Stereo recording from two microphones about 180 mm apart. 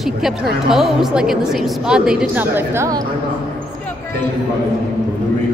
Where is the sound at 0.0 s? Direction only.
Centre (ahead or behind); by 3.1 s 20° right (ahead or behind).